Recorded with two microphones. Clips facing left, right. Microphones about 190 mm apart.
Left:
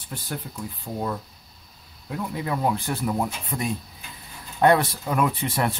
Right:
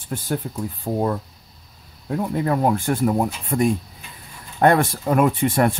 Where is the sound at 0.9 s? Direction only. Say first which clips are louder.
Right 9 dB; 50° right (ahead or behind).